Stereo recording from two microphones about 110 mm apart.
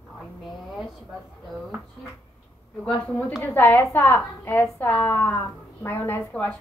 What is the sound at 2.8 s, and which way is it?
A woman's voice, 10° left (ahead or behind).